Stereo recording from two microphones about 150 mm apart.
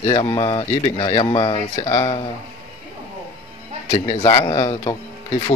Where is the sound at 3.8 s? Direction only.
45° left (ahead or behind).